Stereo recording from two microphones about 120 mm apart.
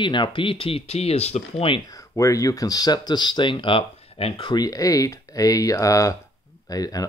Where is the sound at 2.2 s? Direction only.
30° left (ahead or behind); by 4.5 s 50° left (ahead or behind).